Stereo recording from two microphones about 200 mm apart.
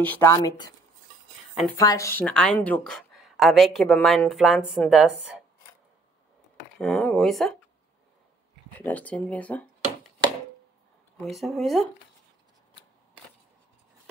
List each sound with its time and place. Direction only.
0.0 s speech: 10° left (ahead or behind)
1.8 s a woman's voice: 15° left (ahead or behind); by 5.4 s 5° right (ahead or behind)
6.8 s a woman's voice: 5° left (ahead or behind)
8.7 s speech: 10° left (ahead or behind)
11.2 s a woman's voice: centre (ahead or behind)